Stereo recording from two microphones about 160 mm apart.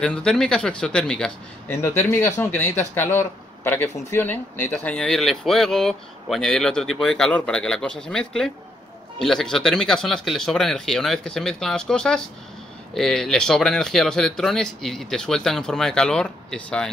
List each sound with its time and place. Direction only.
0.0 s speech: 5° left (ahead or behind)
1.7 s speech: 15° left (ahead or behind)